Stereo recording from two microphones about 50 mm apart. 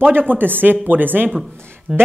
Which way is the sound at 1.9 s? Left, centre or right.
Centre.